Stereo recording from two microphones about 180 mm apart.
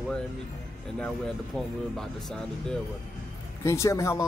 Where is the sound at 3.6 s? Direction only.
15° left (ahead or behind).